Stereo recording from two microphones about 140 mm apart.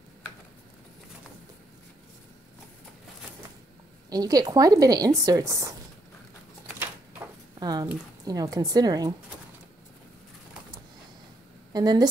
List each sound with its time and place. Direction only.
4.1 s speech: 25° right (ahead or behind)
7.6 s speech: 30° right (ahead or behind)
11.7 s speech: 30° right (ahead or behind)